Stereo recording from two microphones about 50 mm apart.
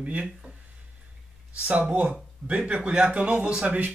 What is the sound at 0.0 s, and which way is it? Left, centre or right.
Speech, right.